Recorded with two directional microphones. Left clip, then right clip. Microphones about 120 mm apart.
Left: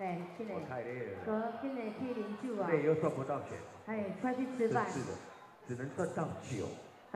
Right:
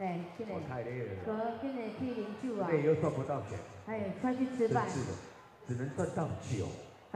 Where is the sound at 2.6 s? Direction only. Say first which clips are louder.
Right 1 dB; 45° right (ahead or behind).